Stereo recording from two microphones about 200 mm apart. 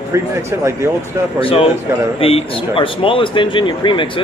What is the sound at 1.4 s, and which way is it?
Speech, 25° left (ahead or behind).